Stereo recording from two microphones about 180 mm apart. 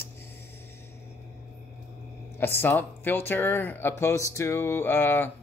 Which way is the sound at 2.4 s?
10° left (ahead or behind).